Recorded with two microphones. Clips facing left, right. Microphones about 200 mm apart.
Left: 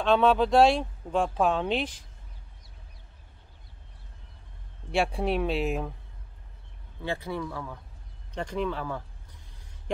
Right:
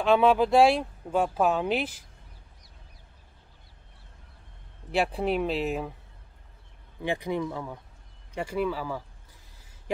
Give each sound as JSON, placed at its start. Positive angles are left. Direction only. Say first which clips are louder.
{"t": 0.0, "sound": "speech", "louder": "right 1 dB", "side_deg": -10}
{"t": 4.9, "sound": "speech", "louder": "even", "side_deg": 0}
{"t": 7.0, "sound": "speech", "louder": "right 3 dB", "side_deg": -15}
{"t": 8.4, "sound": "speech", "louder": "right 2 dB", "side_deg": -5}